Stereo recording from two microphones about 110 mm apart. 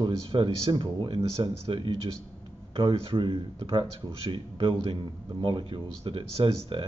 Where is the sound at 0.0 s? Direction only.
50° right (ahead or behind).